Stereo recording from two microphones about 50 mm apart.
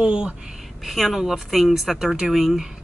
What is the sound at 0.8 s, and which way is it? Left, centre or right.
Speech, centre.